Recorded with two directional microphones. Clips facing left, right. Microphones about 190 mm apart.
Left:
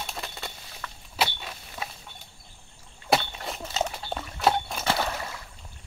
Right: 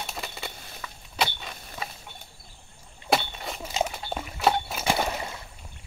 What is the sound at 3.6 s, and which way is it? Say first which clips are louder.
Dog: right 1 dB; 10° right (ahead or behind).